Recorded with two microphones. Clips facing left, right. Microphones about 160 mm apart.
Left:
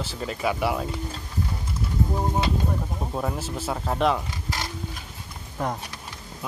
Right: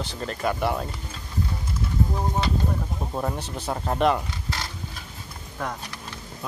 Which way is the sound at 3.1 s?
Centre (ahead or behind).